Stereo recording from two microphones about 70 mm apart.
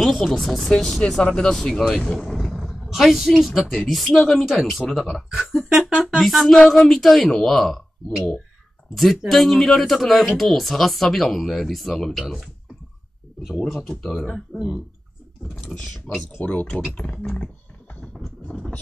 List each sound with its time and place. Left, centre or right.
0.0 s speech: centre
13.7 s speech: centre
15.7 s speech: centre
16.3 s speech: centre